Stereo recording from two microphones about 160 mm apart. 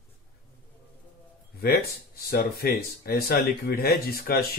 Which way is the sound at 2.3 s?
75° left (ahead or behind).